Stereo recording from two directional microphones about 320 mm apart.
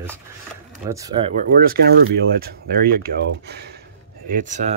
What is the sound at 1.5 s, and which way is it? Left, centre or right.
Speech, right.